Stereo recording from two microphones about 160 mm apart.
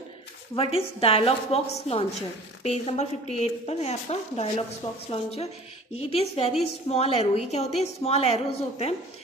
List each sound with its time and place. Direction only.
0.6 s a woman's voice: 35° left (ahead or behind)